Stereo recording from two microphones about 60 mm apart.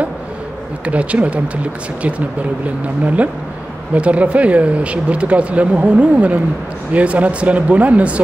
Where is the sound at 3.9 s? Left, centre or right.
Right.